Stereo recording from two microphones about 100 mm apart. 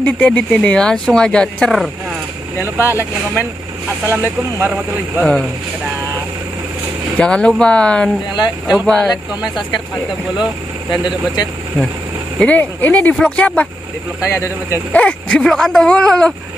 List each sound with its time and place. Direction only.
0.0 s speech: 15° left (ahead or behind)
2.6 s speech: 20° right (ahead or behind)
4.1 s speech: 20° right (ahead or behind)
5.2 s speech: centre (ahead or behind)
7.2 s speech: 10° left (ahead or behind)
9.4 s speech: 50° left (ahead or behind)
10.9 s speech: 45° left (ahead or behind)
12.4 s speech: 15° left (ahead or behind)
14.2 s speech: 30° left (ahead or behind)
14.9 s speech: 10° left (ahead or behind)